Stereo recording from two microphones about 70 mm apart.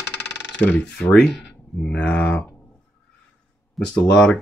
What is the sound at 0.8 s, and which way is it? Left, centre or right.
Speech, centre.